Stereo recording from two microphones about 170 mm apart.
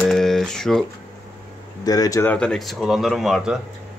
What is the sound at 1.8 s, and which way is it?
Speech, 20° left (ahead or behind).